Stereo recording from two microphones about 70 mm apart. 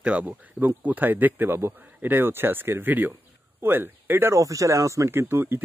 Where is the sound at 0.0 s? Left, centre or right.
Centre.